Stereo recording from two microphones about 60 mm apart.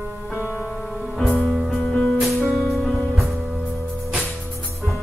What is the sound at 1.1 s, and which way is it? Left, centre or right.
Music, centre.